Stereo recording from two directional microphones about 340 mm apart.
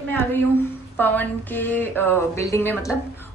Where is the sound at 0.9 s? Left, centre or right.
Centre.